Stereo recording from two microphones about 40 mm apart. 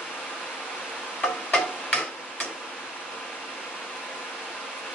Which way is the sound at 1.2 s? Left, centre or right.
Centre.